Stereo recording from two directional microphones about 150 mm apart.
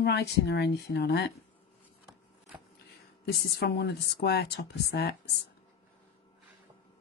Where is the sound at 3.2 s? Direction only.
90° left.